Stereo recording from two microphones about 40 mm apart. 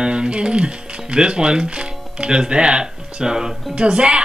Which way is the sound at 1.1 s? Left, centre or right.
Right.